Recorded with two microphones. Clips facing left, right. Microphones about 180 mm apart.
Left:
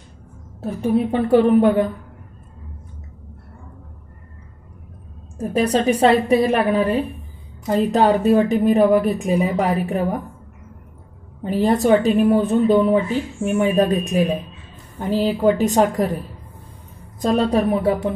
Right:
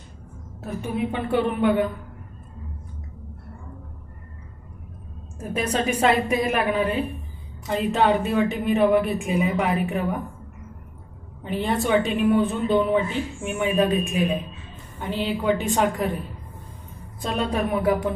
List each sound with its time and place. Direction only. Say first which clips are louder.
0.6 s a woman's voice: left 8 dB; 35° left (ahead or behind)
5.4 s a woman's voice: left 7 dB; 35° left (ahead or behind)
11.4 s a woman's voice: left 7 dB; 40° left (ahead or behind)